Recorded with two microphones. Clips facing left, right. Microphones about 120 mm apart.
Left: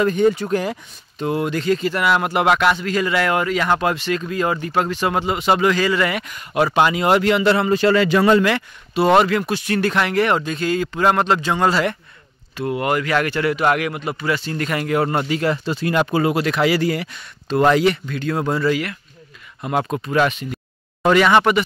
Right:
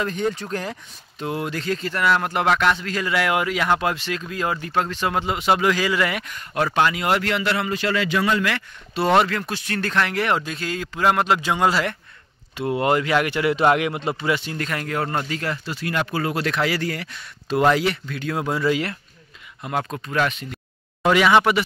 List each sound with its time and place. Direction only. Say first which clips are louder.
0.0 s speech: left 8 dB; 5° left (ahead or behind); by 8.5 s 40° left (ahead or behind)
8.9 s speech: left 4 dB; 5° left (ahead or behind)
12.5 s speech: even; 25° right (ahead or behind)
14.6 s speech: left 6 dB; 5° left (ahead or behind)
15.5 s speech: left 6 dB; 25° left (ahead or behind)
16.3 s speech: left 5 dB; 5° left (ahead or behind)
17.5 s speech: left 3 dB; 5° right (ahead or behind)
18.7 s speech: left 1 dB; 30° right (ahead or behind)
19.6 s speech: left 5 dB; 10° left (ahead or behind)